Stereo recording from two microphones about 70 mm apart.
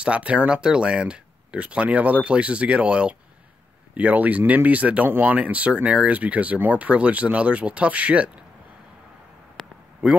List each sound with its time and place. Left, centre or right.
0.0 s speech: centre
10.0 s speech: centre